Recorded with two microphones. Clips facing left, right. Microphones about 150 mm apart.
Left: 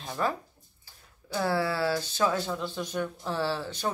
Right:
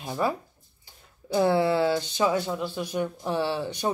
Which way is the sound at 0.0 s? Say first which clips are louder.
Right 3 dB; 10° right (ahead or behind).